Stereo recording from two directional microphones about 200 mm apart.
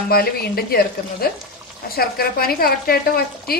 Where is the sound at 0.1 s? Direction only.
50° left (ahead or behind).